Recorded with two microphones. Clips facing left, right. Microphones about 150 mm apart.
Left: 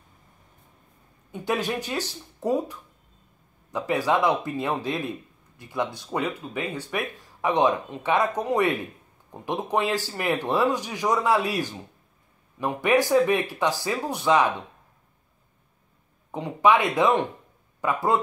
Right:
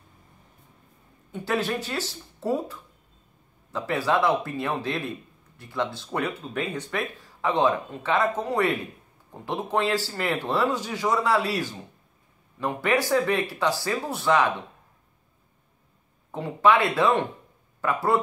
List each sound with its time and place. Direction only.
1.3 s speech: 15° left (ahead or behind)
16.3 s speech: 15° left (ahead or behind)